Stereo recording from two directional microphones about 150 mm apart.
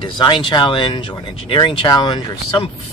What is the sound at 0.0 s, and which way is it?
Speech, 30° left (ahead or behind).